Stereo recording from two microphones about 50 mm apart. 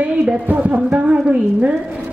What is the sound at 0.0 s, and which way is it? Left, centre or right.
Speech, right.